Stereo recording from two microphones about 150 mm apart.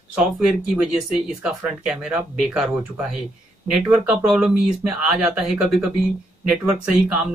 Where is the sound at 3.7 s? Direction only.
5° right (ahead or behind).